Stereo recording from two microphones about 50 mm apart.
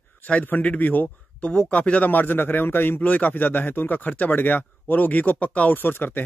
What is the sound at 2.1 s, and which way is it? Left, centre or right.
A man's voice, left.